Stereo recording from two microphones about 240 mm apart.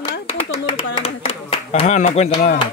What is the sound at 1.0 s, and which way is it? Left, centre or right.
Clapping, left.